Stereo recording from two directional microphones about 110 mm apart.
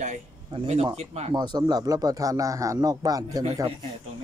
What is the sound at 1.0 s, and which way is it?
Speech, 80° right.